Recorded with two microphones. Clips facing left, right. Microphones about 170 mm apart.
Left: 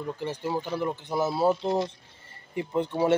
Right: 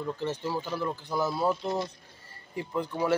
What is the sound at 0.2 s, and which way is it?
Speech, 15° left (ahead or behind).